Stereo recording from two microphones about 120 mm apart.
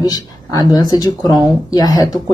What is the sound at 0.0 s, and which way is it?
Speech, 35° left (ahead or behind).